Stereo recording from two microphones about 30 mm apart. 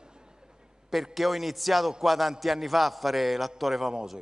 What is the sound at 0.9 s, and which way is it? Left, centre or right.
A man's voice, centre.